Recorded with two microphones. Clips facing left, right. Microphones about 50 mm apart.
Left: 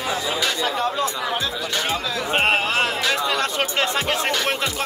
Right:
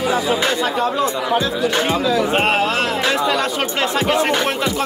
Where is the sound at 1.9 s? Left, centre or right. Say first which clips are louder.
Right 6 dB; centre.